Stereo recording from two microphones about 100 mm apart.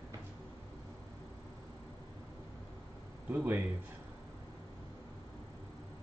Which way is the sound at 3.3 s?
15° right (ahead or behind).